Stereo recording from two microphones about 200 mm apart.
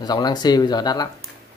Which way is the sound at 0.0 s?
20° left (ahead or behind).